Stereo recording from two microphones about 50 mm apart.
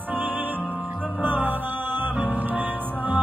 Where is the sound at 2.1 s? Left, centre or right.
Right.